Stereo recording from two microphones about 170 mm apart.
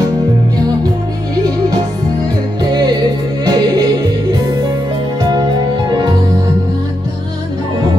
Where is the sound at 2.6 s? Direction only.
25° right (ahead or behind).